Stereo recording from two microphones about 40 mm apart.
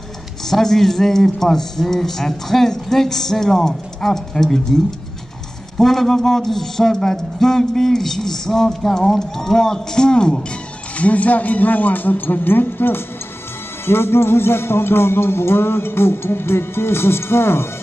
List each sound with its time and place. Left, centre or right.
0.5 s a man's voice: centre
5.8 s a man's voice: centre
11.0 s speech: left
13.8 s music: left